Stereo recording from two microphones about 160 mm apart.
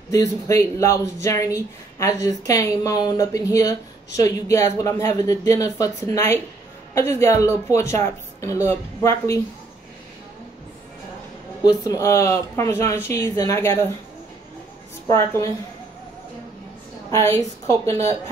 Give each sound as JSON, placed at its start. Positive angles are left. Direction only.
{"t": 0.1, "sound": "speech", "side_deg": 20}
{"t": 11.6, "sound": "speech", "side_deg": 20}
{"t": 15.0, "sound": "speech", "side_deg": 20}
{"t": 17.1, "sound": "speech", "side_deg": 20}